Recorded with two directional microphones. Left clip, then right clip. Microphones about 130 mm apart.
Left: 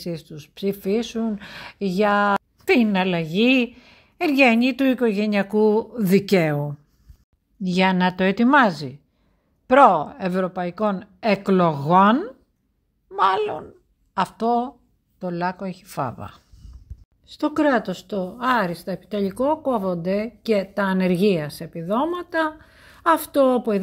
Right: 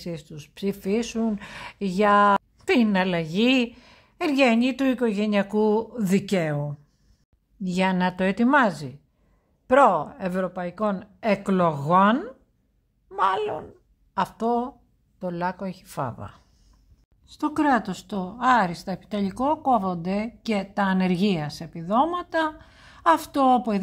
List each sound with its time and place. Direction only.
0.0 s speech: centre (ahead or behind)
6.3 s speech: 25° left (ahead or behind)
7.6 s a woman's voice: 15° left (ahead or behind)
13.1 s a woman's voice: 15° left (ahead or behind)
17.9 s speech: 15° right (ahead or behind)